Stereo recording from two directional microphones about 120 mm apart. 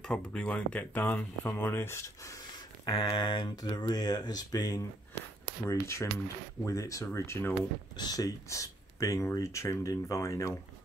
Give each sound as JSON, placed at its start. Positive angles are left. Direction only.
{"t": 0.1, "sound": "speech", "side_deg": 10}
{"t": 2.8, "sound": "speech", "side_deg": 45}
{"t": 8.0, "sound": "speech", "side_deg": 30}